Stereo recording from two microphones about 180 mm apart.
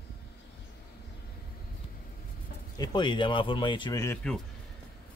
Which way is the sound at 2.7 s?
25° left (ahead or behind).